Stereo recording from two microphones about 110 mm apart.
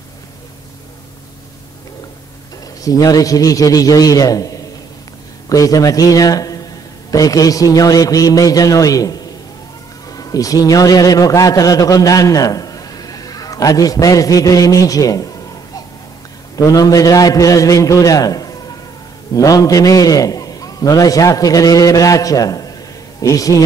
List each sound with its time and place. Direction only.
2.8 s a man's voice: 35° left (ahead or behind)